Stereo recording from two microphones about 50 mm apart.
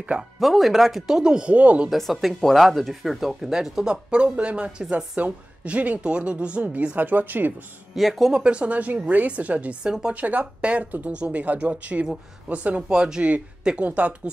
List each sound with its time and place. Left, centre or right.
0.4 s speech: centre
1.5 s speech: right
1.9 s speech: centre
3.9 s speech: right
4.6 s speech: centre
4.9 s speech: right
7.9 s speech: centre
8.3 s speech: right